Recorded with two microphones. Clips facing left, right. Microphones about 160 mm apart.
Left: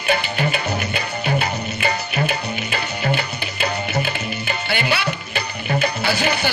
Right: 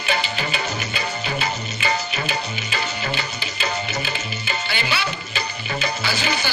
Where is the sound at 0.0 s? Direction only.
55° left (ahead or behind).